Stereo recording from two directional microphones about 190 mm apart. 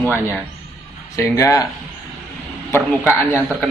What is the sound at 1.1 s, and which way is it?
Speech, 15° left (ahead or behind).